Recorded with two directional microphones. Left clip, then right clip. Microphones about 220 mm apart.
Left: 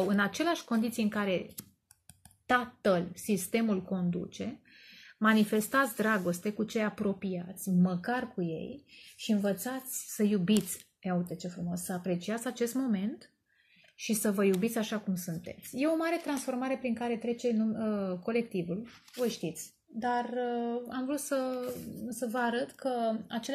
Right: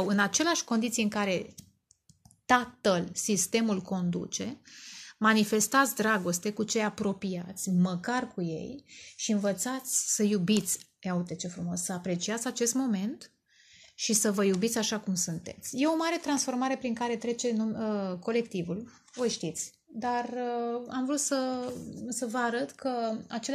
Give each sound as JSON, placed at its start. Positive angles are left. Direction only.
{"t": 0.0, "sound": "a woman's voice", "side_deg": -40}